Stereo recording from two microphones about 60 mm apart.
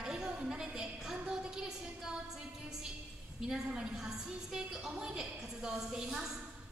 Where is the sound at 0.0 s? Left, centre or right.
Centre.